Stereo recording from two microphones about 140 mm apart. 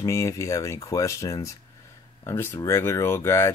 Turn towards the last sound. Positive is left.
turn(degrees=20)  # may be behind; listen again after turning